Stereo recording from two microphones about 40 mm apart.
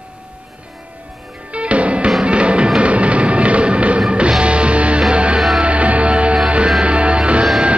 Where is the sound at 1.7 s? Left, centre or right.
Right.